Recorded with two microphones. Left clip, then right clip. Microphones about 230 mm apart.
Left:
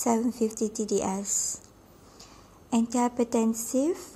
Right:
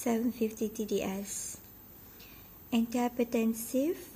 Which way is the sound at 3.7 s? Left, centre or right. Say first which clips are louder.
Left 4 dB; centre.